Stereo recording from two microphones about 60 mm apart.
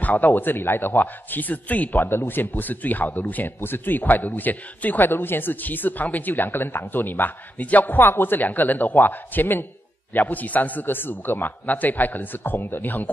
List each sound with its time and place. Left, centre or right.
0.0 s a man's voice: left